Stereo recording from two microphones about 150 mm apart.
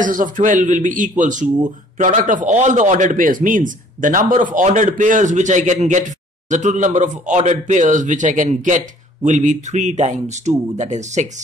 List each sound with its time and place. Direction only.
0.0 s a man's voice: 60° right (ahead or behind)